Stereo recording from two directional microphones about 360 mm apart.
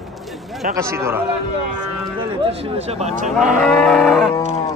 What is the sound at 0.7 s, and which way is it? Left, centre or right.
Speech, centre.